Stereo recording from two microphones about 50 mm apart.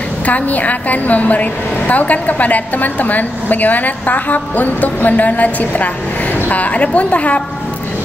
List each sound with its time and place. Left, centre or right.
0.2 s a woman's voice: left